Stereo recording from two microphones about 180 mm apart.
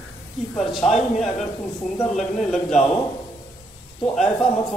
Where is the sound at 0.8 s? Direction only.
Centre (ahead or behind).